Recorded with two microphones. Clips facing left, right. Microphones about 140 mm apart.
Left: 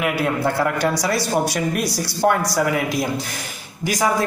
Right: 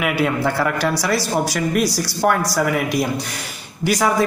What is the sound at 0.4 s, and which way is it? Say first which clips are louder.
A man's voice: even; 20° left (ahead or behind).